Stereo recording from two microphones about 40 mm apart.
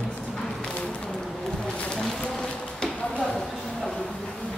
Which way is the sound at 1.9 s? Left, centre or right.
Centre.